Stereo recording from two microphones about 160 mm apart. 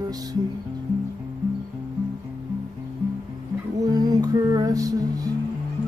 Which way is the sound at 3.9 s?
25° right (ahead or behind).